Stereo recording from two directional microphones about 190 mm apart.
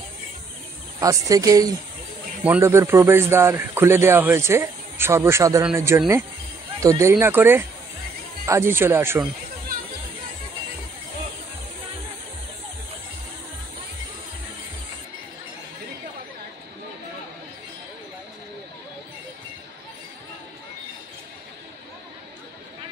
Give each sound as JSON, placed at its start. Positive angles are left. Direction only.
{"t": 0.9, "sound": "a woman's voice", "side_deg": -20}